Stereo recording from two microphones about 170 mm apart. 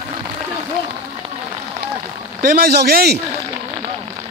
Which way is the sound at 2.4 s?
60° right (ahead or behind).